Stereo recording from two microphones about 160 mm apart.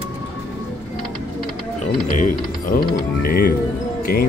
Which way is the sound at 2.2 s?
55° left (ahead or behind).